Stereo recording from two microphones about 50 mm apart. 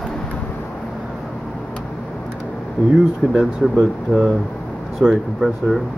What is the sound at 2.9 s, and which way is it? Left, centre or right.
Speech, centre.